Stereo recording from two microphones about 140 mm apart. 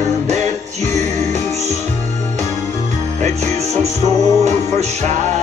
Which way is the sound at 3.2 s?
55° right (ahead or behind).